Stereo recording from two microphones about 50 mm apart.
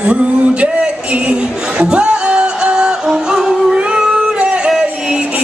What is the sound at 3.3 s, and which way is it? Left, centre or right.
Yodeling, centre.